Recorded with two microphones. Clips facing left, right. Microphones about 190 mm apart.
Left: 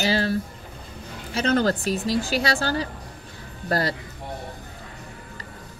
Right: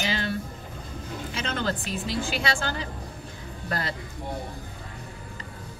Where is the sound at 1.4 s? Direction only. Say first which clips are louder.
Left 9 dB; 40° left (ahead or behind).